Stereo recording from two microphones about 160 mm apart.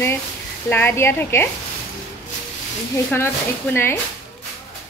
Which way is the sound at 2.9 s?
15° left (ahead or behind).